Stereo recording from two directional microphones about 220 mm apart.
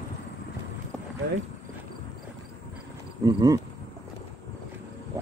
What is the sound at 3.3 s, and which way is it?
Cricket, 15° right (ahead or behind).